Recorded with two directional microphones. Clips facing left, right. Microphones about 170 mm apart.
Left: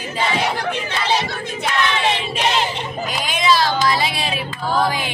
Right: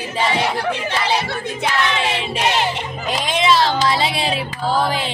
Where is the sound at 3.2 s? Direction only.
25° right (ahead or behind).